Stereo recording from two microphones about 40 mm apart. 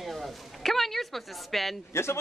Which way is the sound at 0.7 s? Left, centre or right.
Centre.